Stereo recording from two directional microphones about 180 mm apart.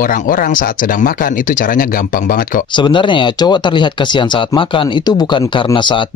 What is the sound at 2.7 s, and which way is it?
Speech, 25° left (ahead or behind).